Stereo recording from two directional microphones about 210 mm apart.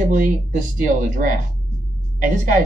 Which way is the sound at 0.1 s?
40° right (ahead or behind).